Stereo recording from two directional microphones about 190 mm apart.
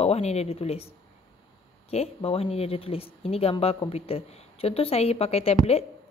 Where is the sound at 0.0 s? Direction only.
35° left (ahead or behind).